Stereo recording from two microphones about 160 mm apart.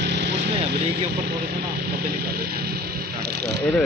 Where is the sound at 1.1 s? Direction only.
90° right.